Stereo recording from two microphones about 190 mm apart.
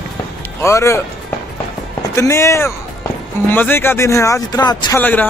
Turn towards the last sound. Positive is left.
turn(degrees=10)  # may be behind; listen again after turning